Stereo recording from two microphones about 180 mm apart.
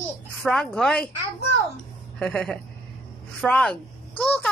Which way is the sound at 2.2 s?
5° left (ahead or behind).